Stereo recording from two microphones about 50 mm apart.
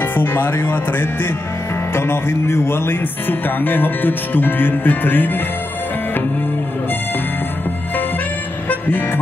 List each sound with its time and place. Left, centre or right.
0.1 s speech: left
2.0 s speech: left